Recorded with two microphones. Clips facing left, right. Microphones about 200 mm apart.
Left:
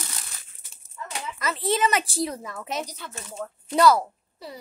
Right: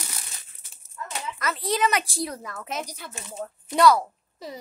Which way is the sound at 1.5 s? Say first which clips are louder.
Left 1 dB; centre (ahead or behind).